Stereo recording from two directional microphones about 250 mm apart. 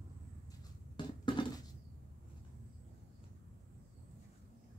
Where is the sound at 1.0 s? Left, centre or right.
Centre.